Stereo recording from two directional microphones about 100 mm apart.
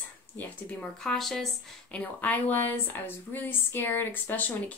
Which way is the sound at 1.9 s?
15° left (ahead or behind).